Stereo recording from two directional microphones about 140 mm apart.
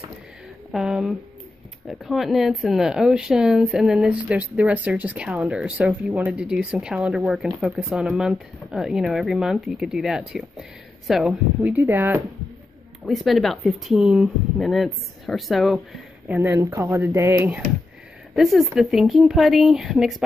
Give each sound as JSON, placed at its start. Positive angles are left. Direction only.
{"t": 0.7, "sound": "a woman's voice", "side_deg": -5}
{"t": 11.7, "sound": "speech", "side_deg": -15}
{"t": 13.0, "sound": "speech", "side_deg": 0}
{"t": 16.3, "sound": "speech", "side_deg": -20}
{"t": 18.3, "sound": "speech", "side_deg": 0}